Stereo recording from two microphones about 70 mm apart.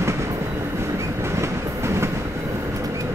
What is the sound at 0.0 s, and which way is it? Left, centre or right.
Train, right.